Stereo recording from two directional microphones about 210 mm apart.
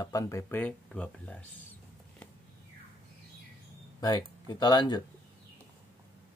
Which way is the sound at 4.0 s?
20° left (ahead or behind).